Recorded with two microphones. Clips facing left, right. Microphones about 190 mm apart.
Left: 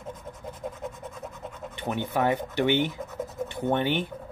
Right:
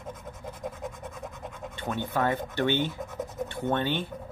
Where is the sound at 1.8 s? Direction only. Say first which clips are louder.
Left 2 dB; 15° left (ahead or behind).